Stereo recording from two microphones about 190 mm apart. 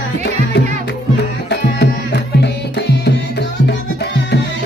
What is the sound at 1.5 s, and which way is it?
Tabla, 65° left (ahead or behind).